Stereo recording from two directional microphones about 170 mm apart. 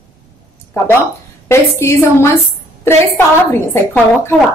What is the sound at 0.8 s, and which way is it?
A woman's voice, 15° left (ahead or behind).